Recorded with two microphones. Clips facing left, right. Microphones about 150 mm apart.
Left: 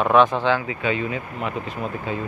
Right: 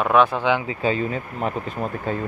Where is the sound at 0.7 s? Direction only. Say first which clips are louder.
Right 2 dB; 35° right (ahead or behind).